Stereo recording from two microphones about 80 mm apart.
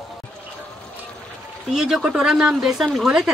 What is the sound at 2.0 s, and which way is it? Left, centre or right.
A woman's voice, centre.